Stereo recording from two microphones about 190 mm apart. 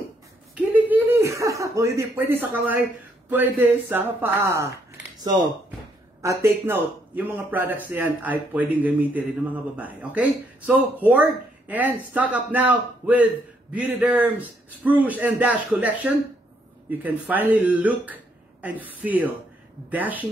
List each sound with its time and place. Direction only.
0.6 s a sound: 10° right (ahead or behind)
3.3 s a man's voice: 10° right (ahead or behind)
6.2 s a man's voice: 15° right (ahead or behind)